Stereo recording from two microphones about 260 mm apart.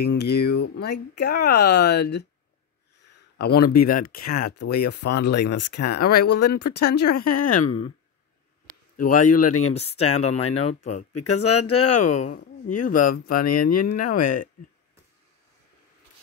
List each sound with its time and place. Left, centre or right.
0.0 s speech: left
3.3 s speech: left
4.2 s speech: left
4.8 s speech: left
6.8 s speech: left
8.9 s speech: left
10.4 s speech: left
10.7 s speech: left
11.1 s speech: left
12.7 s speech: left
13.5 s speech: left